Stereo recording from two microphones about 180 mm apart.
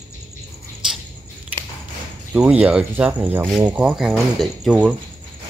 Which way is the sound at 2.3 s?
5° right (ahead or behind).